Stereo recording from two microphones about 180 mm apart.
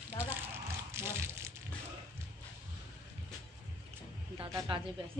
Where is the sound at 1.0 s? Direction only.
15° right (ahead or behind).